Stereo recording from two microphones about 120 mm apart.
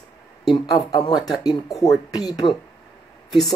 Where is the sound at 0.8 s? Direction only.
35° left (ahead or behind).